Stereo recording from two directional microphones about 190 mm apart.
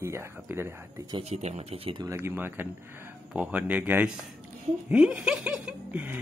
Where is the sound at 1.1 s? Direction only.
35° right (ahead or behind).